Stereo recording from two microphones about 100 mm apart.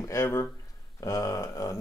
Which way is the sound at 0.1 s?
30° left (ahead or behind).